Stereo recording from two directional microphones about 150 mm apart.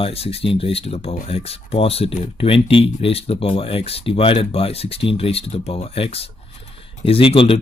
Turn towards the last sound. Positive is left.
turn(degrees=35)  # may be behind; listen again after turning